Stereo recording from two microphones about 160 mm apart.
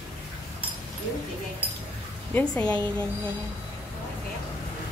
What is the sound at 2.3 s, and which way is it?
Speech, 10° left (ahead or behind).